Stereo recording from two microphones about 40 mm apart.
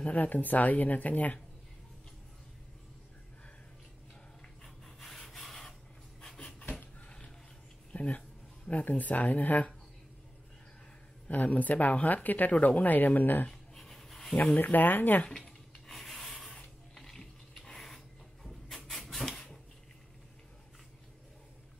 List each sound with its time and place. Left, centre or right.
0.0 s speech: left
4.8 s rub: centre
6.2 s a sound: centre
7.0 s a sound: left
8.6 s speech: left
11.2 s speech: left
13.5 s writing: centre
14.3 s speech: left
14.6 s speech: left
15.9 s rub: centre
16.5 s spray: centre
17.6 s a sound: centre